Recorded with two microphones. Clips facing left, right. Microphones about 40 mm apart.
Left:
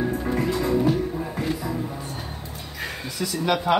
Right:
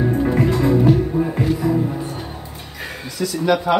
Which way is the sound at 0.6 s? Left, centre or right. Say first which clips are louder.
Right 6 dB; right.